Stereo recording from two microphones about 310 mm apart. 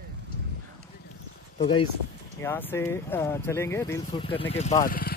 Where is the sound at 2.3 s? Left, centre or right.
Centre.